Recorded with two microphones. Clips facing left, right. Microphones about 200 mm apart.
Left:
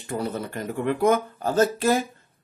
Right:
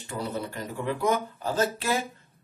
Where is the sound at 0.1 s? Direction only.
45° left (ahead or behind).